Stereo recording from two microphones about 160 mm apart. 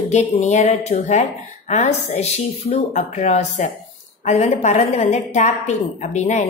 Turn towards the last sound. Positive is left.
turn(degrees=45)  # may be behind; listen again after turning